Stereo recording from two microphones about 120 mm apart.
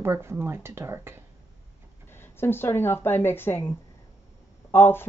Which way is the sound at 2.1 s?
20° left (ahead or behind).